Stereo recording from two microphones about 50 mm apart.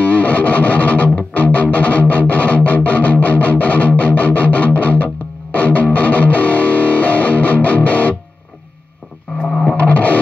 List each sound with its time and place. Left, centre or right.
0.0 s music: left
9.7 s music: left